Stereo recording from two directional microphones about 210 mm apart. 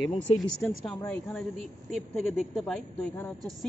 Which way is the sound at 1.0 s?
5° left (ahead or behind).